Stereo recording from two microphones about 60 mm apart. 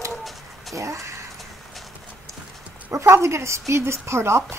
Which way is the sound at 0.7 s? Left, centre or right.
Right.